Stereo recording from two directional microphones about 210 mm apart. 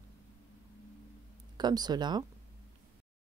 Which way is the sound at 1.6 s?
20° right (ahead or behind).